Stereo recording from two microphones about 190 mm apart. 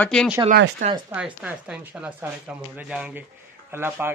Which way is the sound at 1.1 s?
5° right (ahead or behind).